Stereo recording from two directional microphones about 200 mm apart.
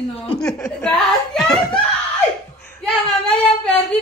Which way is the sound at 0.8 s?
5° left (ahead or behind).